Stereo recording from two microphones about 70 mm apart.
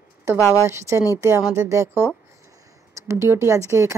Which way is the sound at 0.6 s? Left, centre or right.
Right.